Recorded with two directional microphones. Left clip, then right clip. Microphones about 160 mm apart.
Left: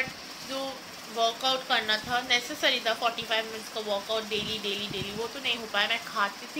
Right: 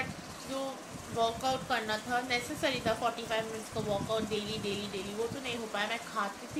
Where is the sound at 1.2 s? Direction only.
Centre (ahead or behind).